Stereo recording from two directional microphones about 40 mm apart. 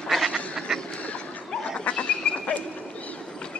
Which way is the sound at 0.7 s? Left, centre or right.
Centre.